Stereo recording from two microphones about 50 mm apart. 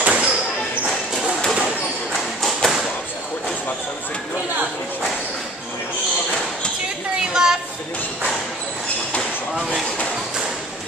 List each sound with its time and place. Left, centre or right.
0.0 s basketball bounce: right
2.4 s thump: centre
7.4 s a sound: centre